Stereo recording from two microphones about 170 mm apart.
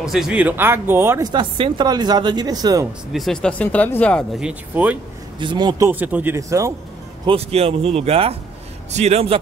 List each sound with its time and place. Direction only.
0.0 s speech: centre (ahead or behind)
1.3 s speech: 30° right (ahead or behind)
3.1 s speech: centre (ahead or behind)
5.4 s speech: 25° right (ahead or behind)
5.9 s speech: 10° right (ahead or behind)
7.2 s speech: 35° right (ahead or behind)